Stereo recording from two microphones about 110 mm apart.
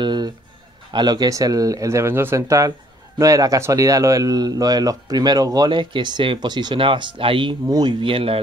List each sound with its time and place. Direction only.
0.0 s a sound: 40° right (ahead or behind)
0.9 s speech: 40° right (ahead or behind)
7.6 s speech: 35° right (ahead or behind)
8.0 s speech: 55° right (ahead or behind)